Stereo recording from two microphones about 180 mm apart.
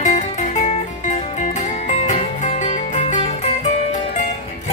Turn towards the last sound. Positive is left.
turn(degrees=40)  # may be behind; listen again after turning